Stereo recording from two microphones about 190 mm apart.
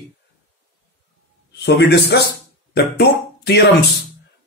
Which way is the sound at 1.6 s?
60° left (ahead or behind).